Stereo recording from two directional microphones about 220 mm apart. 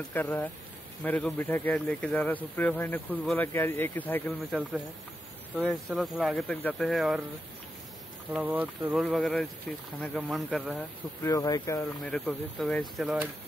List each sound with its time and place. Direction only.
0.1 s speech: 10° left (ahead or behind)
5.6 s speech: centre (ahead or behind)
8.3 s speech: 5° right (ahead or behind)
10.2 s speech: 5° right (ahead or behind)
11.2 s speech: 15° left (ahead or behind)
12.0 s speech: centre (ahead or behind)